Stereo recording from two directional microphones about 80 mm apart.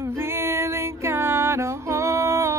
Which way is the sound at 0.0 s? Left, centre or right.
Right.